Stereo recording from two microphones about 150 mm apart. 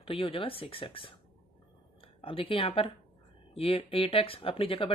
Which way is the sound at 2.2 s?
35° left (ahead or behind).